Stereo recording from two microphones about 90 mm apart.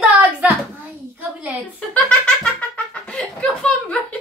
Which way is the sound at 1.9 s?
10° left (ahead or behind).